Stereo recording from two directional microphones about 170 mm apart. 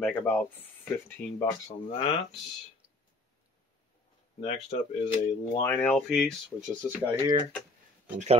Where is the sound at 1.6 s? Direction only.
35° left (ahead or behind).